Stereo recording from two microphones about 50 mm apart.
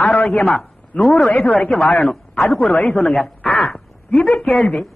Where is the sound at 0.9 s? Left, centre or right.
Left.